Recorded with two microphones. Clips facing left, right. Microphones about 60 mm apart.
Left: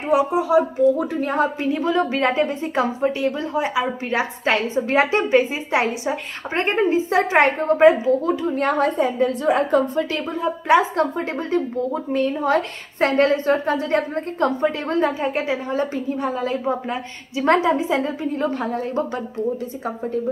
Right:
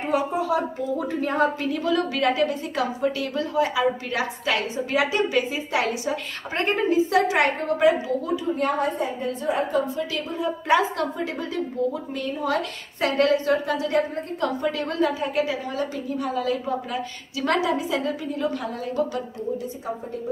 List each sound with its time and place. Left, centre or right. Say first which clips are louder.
0.1 s a woman's voice: left 7 dB; centre
1.6 s a woman's voice: left 3 dB; left
10.7 s a woman's voice: left 5 dB; left
11.1 s a woman's voice: left 5 dB; left